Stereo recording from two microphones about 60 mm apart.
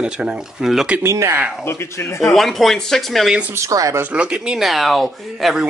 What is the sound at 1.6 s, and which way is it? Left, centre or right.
Speech, left.